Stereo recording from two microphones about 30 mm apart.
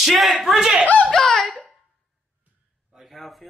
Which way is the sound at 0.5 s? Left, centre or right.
Right.